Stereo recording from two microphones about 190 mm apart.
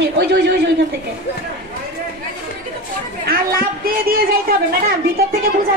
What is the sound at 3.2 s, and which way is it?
Speech, 50° right (ahead or behind).